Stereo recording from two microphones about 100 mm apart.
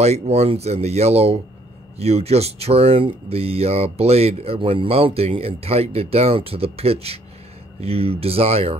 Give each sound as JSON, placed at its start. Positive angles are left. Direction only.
{"t": 0.0, "sound": "speech", "side_deg": -90}